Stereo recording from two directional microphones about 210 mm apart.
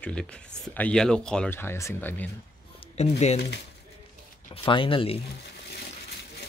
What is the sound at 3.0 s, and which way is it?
Speech, 30° left (ahead or behind).